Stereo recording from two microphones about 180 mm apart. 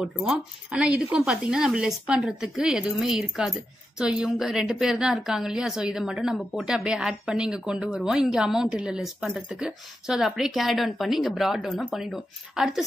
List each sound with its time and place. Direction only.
0.0 s a woman's voice: 5° right (ahead or behind)